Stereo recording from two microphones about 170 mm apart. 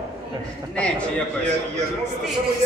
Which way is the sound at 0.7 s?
5° left (ahead or behind).